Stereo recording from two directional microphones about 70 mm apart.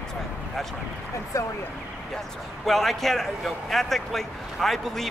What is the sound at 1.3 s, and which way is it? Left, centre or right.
Speech, left.